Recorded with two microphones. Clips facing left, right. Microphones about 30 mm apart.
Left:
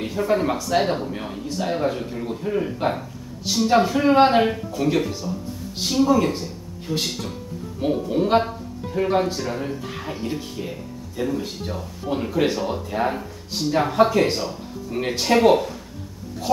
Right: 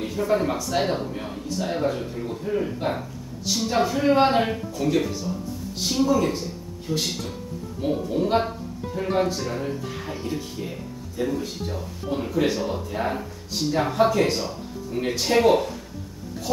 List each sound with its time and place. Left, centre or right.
0.0 s a man's voice: centre
7.8 s a man's voice: centre
15.0 s a man's voice: centre
15.3 s speech: centre